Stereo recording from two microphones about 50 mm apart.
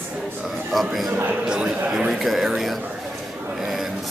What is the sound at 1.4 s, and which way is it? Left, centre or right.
A man's voice, centre.